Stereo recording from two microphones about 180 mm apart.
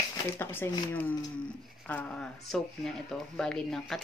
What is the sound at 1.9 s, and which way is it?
Speech, 5° left (ahead or behind).